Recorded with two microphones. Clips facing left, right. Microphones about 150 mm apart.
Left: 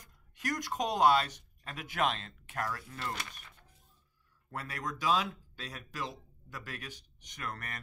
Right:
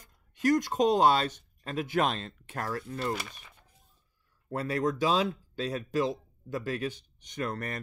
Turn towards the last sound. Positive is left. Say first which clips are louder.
# right 9 dB
turn(degrees=-30)  # may be behind; listen again after turning